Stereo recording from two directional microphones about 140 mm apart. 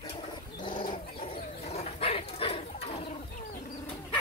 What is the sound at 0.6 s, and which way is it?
Wild animals, 35° left (ahead or behind).